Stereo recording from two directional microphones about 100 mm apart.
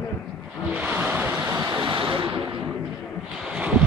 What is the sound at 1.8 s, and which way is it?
Waves, 55° right (ahead or behind).